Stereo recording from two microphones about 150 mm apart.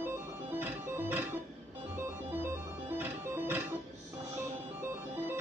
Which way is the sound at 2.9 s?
15° right (ahead or behind).